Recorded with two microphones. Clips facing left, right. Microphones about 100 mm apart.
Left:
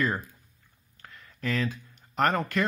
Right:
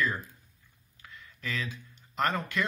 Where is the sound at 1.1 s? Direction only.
40° left (ahead or behind).